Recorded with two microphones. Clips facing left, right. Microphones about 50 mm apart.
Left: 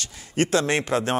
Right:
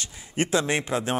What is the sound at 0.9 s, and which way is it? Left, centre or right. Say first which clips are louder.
Speech: left 3 dB; left.